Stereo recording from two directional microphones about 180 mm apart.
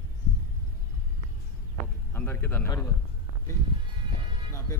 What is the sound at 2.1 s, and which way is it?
Speech, 10° left (ahead or behind).